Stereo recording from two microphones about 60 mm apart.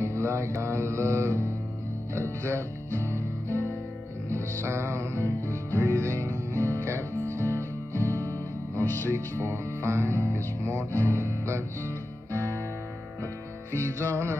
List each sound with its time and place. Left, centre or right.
0.0 s music: right
2.1 s speech: right
3.4 s music: left
4.3 s music: right
8.8 s music: left
9.1 s speech: right
11.1 s music: right
13.7 s speech: right